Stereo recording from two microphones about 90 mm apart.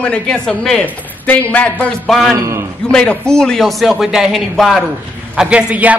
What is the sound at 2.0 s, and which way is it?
Speech, 5° left (ahead or behind).